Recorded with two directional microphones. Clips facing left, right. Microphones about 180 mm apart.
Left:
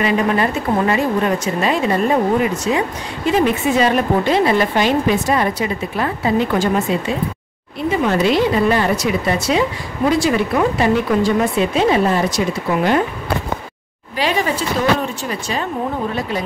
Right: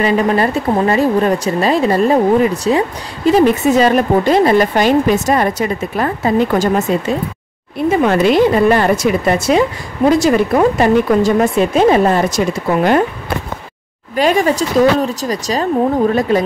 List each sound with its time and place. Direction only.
0.0 s a woman's voice: 35° right (ahead or behind)
8.0 s a woman's voice: 55° right (ahead or behind)
14.1 s speech: 45° right (ahead or behind)